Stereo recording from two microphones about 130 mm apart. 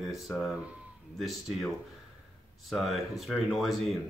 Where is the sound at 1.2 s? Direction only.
Centre (ahead or behind).